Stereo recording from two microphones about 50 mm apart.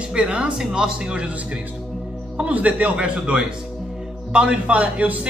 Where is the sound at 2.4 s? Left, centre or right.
Right.